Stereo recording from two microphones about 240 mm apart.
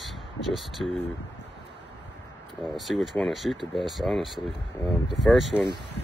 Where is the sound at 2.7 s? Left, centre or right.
Centre.